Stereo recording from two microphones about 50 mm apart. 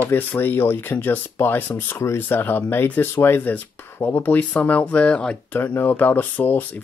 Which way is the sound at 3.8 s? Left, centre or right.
Left.